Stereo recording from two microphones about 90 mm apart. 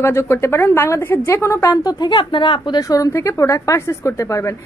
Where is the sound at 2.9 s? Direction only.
35° left (ahead or behind).